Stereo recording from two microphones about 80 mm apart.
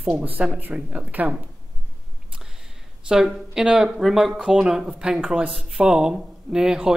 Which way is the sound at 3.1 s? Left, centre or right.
Centre.